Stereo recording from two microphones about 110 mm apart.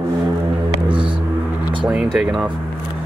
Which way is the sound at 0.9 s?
50° right (ahead or behind).